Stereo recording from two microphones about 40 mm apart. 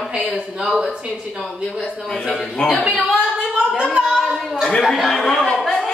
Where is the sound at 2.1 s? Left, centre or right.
Centre.